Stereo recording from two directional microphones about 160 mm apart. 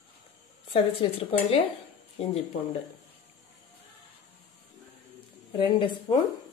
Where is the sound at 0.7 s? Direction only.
35° left (ahead or behind).